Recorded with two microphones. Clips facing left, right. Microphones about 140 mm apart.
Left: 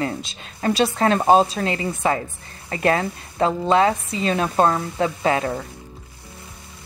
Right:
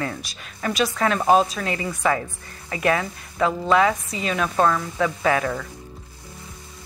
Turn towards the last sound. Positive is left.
turn(degrees=30)  # may be behind; listen again after turning